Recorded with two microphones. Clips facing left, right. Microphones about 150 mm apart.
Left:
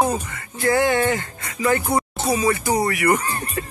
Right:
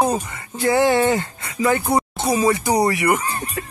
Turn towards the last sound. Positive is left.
turn(degrees=-15)  # may be behind; listen again after turning